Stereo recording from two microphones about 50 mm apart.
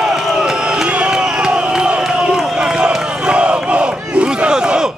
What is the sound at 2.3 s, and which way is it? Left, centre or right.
Crowd, centre.